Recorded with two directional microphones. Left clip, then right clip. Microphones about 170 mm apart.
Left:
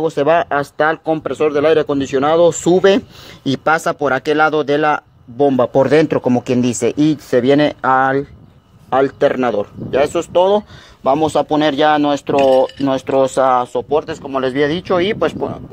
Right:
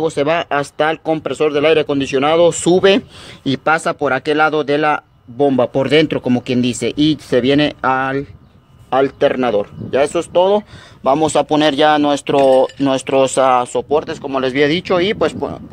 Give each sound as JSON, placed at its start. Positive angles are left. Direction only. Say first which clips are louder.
{"t": 0.0, "sound": "speech", "louder": "left 2 dB", "side_deg": -15}
{"t": 3.4, "sound": "speech", "louder": "even", "side_deg": 0}
{"t": 11.1, "sound": "speech", "louder": "right 1 dB", "side_deg": -40}